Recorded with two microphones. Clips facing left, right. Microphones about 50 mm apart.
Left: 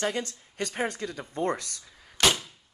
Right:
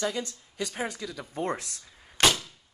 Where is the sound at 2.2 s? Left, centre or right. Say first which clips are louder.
Right 1 dB; right.